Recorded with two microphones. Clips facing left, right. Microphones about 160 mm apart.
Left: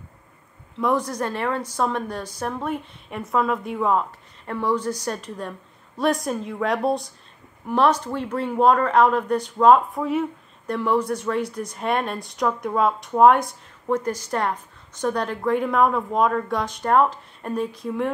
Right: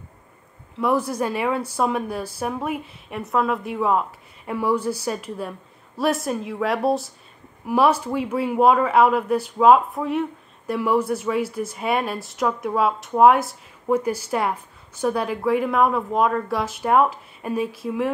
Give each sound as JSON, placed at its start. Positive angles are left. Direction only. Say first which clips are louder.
{"t": 0.7, "sound": "a woman's voice", "louder": "right 1 dB", "side_deg": -5}